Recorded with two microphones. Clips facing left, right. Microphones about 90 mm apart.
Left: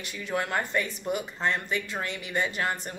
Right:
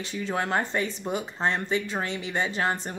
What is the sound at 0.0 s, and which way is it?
Speech, 25° right (ahead or behind).